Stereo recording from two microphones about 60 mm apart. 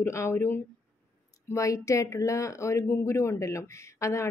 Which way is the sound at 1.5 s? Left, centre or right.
Left.